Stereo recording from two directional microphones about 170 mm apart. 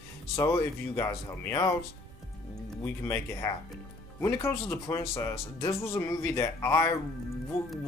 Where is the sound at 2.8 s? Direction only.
15° left (ahead or behind).